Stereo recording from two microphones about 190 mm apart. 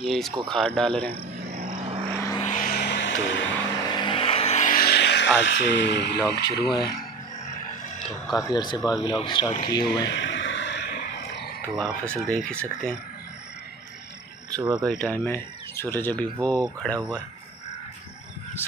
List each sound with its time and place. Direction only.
0.0 s speech: centre (ahead or behind)
1.4 s a sound: 55° right (ahead or behind)
1.9 s vehicle: 30° right (ahead or behind)
2.1 s vehicle: 15° left (ahead or behind)
2.4 s music: 45° left (ahead or behind); by 3.5 s 75° left (ahead or behind)
4.0 s vehicle: 30° left (ahead or behind); by 5.3 s 65° left (ahead or behind)
5.4 s speech: 70° left (ahead or behind)
6.5 s speech: 25° left (ahead or behind)
8.4 s speech: 20° left (ahead or behind)
10.0 s a sound: 70° left (ahead or behind)
11.7 s speech: 5° left (ahead or behind)
14.9 s speech: 5° left (ahead or behind)